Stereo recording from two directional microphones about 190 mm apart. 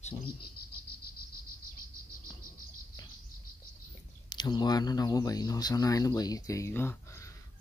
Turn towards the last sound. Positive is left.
turn(degrees=15)  # may be behind; listen again after turning